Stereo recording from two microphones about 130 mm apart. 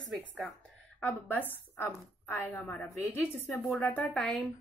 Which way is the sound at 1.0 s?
15° left (ahead or behind).